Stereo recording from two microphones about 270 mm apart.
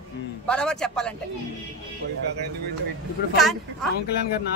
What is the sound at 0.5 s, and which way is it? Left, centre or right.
Speech, centre.